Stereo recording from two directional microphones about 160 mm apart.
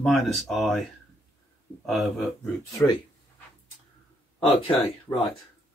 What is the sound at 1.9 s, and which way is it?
Speech, centre (ahead or behind).